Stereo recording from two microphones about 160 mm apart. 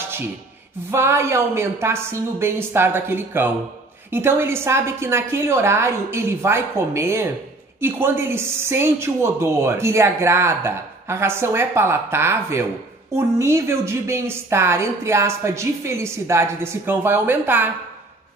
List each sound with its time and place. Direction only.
0.9 s a woman's voice: 15° right (ahead or behind)